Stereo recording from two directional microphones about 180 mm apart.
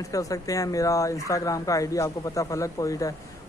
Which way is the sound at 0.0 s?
20° left (ahead or behind).